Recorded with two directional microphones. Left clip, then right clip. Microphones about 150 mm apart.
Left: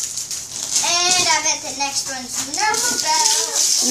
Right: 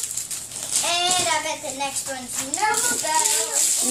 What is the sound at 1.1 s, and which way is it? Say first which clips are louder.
Child singing: left 5 dB; 45° right (ahead or behind).